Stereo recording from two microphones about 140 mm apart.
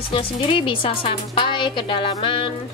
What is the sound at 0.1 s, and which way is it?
A woman's voice, 40° left (ahead or behind).